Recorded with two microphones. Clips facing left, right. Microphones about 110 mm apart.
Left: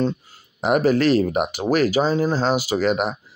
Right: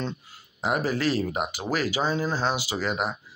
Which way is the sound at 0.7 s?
65° left (ahead or behind).